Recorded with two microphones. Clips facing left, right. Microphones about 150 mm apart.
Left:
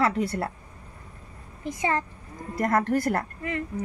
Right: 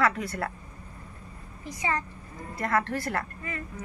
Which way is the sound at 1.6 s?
55° left (ahead or behind).